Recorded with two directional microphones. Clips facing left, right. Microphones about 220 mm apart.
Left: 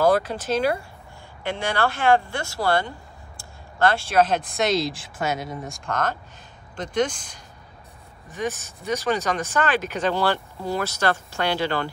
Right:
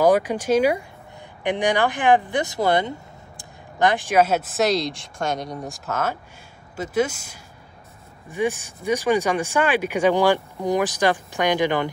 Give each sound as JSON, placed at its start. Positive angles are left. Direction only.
{"t": 0.0, "sound": "speech", "side_deg": -15}